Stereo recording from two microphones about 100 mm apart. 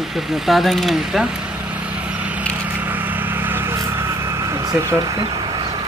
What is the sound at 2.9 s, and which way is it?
Vehicle, 20° right (ahead or behind).